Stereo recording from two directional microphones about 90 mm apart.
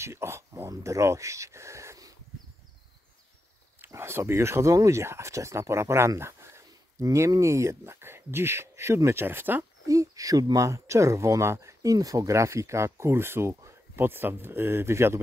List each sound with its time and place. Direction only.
0.0 s speech: 30° right (ahead or behind)
3.8 s speech: 30° right (ahead or behind)
9.8 s speech: 40° right (ahead or behind)